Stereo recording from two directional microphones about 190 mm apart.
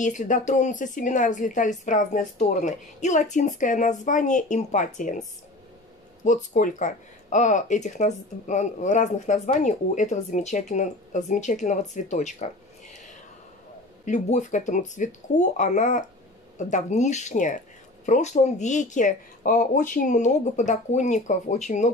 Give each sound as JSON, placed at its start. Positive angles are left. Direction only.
{"t": 0.0, "sound": "speech", "side_deg": 40}
{"t": 6.2, "sound": "speech", "side_deg": 40}